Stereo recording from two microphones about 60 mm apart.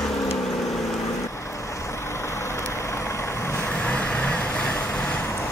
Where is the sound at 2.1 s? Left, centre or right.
Left.